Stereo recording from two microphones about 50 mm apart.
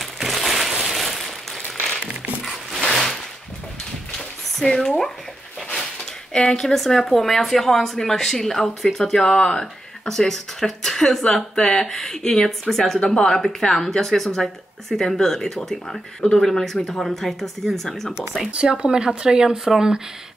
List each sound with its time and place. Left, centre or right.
0.0 s a sound: centre
2.9 s a sound: centre
4.6 s a woman's voice: centre
6.3 s a woman's voice: centre
6.6 s a woman's voice: centre
18.5 s speech: right